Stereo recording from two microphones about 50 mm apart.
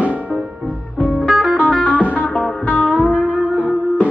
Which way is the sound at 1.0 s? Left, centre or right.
Left.